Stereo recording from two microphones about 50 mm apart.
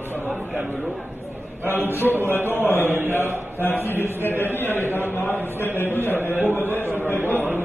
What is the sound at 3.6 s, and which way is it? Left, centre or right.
Speech, left.